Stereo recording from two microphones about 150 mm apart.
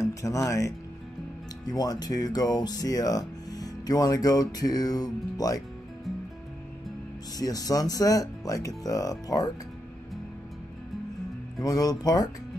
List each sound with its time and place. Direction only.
0.0 s speech: 20° left (ahead or behind)
7.3 s speech: 25° left (ahead or behind)
11.6 s speech: 25° left (ahead or behind)